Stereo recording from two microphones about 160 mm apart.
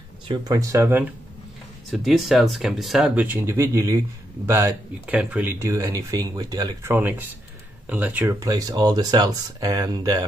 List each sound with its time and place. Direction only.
0.3 s speech: 25° right (ahead or behind)
1.9 s speech: centre (ahead or behind)
8.4 s speech: 25° right (ahead or behind)